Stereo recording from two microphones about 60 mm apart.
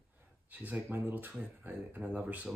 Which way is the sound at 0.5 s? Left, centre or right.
Right.